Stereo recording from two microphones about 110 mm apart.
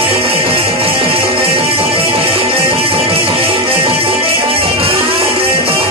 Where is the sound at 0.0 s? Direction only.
60° right (ahead or behind).